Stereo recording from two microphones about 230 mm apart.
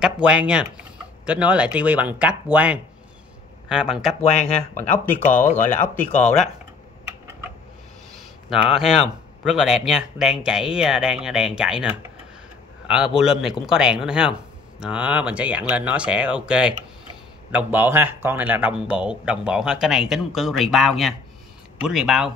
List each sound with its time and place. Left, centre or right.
0.0 s a man's voice: centre
4.2 s speech: left
4.8 s speech: centre
8.6 s a man's voice: centre